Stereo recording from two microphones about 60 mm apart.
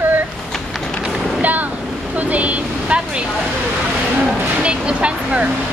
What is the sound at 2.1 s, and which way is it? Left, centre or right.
Speech, right.